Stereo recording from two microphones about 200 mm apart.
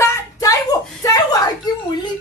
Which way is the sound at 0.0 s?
15° left (ahead or behind).